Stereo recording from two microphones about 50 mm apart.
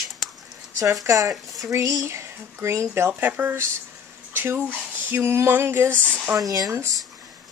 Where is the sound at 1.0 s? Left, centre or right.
Right.